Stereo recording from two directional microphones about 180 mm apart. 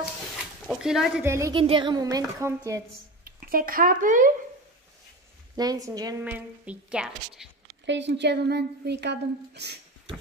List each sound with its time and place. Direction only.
0.7 s speech: centre (ahead or behind)
1.2 s a woman's voice: 15° right (ahead or behind)
1.5 s speech: 30° right (ahead or behind)
3.3 s speech: 55° right (ahead or behind)
5.6 s speech: 20° right (ahead or behind)
6.2 s a woman's voice: 5° right (ahead or behind)
7.8 s speech: 85° right; by 9.8 s 70° right (ahead or behind)